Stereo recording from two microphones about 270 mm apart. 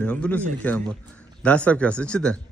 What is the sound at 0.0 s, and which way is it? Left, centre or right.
Speech, centre.